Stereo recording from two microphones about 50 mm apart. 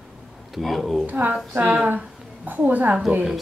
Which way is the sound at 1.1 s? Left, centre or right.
Right.